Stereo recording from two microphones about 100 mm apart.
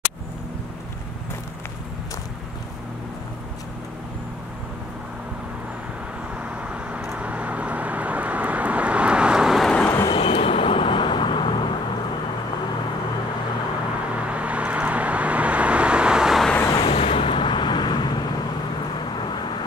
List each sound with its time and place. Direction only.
6.7 s vehicle: 15° right (ahead or behind)
9.7 s vehicle: 10° left (ahead or behind)
10.1 s vehicle: 70° left (ahead or behind)
14.2 s vehicle: 15° right (ahead or behind)
16.7 s vehicle: 55° left (ahead or behind)
17.0 s vehicle: 65° left (ahead or behind); by 18.1 s 50° left (ahead or behind)
19.1 s vehicle: 50° left (ahead or behind)